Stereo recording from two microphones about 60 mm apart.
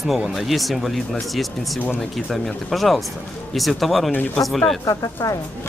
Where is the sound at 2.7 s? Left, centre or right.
Centre.